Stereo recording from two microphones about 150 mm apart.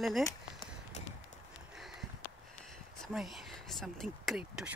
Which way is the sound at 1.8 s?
Centre (ahead or behind).